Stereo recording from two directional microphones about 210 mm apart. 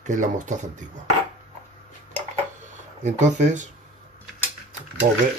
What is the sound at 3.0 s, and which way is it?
Speech, 35° right (ahead or behind).